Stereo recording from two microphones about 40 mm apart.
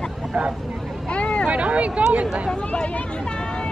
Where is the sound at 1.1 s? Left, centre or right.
Left.